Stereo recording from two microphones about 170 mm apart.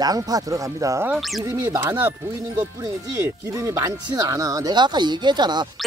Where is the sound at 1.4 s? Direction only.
20° right (ahead or behind).